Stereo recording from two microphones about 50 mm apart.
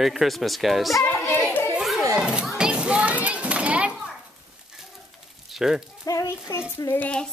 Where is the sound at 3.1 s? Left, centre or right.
Right.